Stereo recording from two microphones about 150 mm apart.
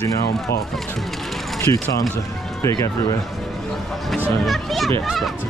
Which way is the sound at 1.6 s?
20° left (ahead or behind).